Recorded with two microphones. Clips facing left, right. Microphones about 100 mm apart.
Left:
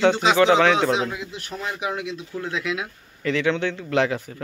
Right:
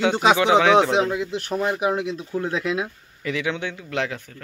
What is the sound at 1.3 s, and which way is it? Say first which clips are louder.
Speech: right 8 dB; 70° right (ahead or behind).